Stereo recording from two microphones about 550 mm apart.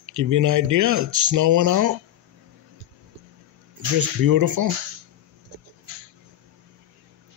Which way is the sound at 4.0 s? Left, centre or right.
Right.